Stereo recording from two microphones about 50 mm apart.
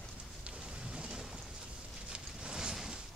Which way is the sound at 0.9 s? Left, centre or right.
Centre.